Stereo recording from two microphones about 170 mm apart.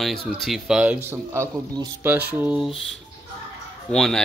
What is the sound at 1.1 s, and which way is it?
A man's voice, 20° right (ahead or behind).